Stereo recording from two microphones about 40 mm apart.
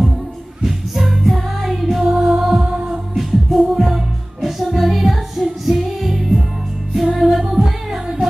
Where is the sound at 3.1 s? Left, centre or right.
Centre.